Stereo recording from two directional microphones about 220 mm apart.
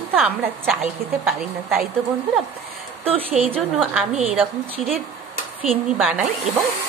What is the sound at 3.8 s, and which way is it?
Speech, centre (ahead or behind).